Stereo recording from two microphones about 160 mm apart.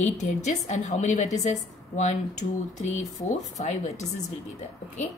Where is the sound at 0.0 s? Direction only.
45° left (ahead or behind).